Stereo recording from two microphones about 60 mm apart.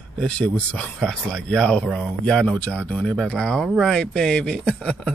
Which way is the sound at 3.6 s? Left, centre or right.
Centre.